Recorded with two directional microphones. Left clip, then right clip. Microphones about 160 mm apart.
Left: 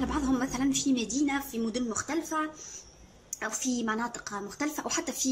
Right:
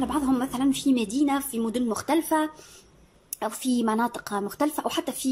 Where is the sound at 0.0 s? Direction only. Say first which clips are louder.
Right 4 dB; 20° right (ahead or behind).